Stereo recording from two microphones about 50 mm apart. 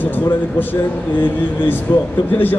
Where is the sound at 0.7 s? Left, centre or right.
Left.